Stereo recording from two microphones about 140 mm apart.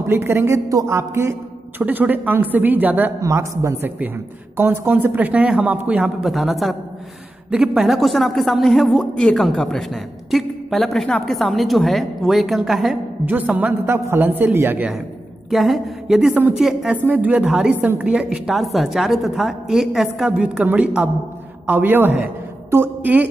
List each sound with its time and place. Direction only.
0.0 s a woman's voice: 20° right (ahead or behind); by 13.3 s centre (ahead or behind)
13.3 s speech: 10° right (ahead or behind)
15.5 s a woman's voice: centre (ahead or behind)